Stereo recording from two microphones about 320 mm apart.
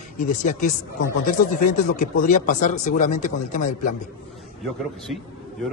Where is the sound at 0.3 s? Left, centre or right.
Left.